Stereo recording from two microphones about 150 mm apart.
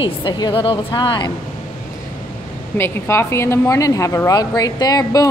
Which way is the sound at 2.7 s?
15° left (ahead or behind).